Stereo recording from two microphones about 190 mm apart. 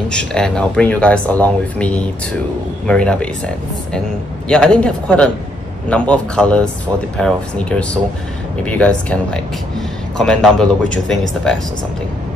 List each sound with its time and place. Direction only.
0.1 s speech: 5° left (ahead or behind)
4.5 s speech: 5° left (ahead or behind)